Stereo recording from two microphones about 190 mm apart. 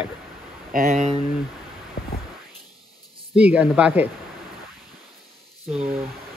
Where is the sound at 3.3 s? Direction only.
5° right (ahead or behind).